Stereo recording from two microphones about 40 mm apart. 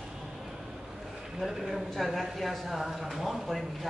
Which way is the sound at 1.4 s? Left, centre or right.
Centre.